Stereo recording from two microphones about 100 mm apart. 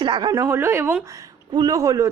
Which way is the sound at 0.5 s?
25° right (ahead or behind).